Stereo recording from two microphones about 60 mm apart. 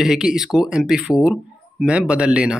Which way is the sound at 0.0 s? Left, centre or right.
Centre.